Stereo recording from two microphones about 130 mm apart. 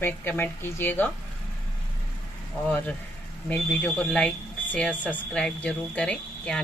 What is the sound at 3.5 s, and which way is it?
Speech, 10° left (ahead or behind).